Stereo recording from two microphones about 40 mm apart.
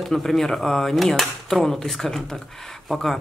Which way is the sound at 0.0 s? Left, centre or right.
Centre.